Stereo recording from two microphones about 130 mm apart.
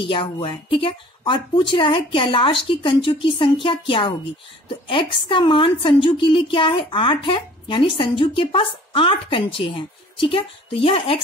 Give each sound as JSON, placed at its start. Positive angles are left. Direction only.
{"t": 0.0, "sound": "a woman's voice", "side_deg": 40}